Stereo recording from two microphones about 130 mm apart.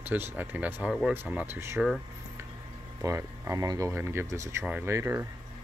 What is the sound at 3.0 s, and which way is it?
Speech, 25° right (ahead or behind).